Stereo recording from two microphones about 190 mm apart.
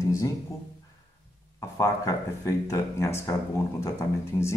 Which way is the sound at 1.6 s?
15° left (ahead or behind).